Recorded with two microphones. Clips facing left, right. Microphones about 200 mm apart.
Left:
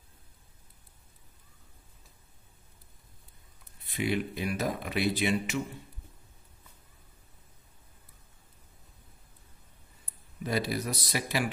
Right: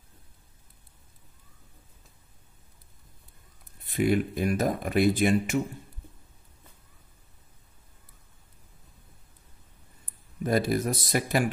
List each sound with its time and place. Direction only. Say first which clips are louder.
3.8 s speech: right 6 dB; 50° right (ahead or behind)
10.4 s speech: right 6 dB; 50° right (ahead or behind)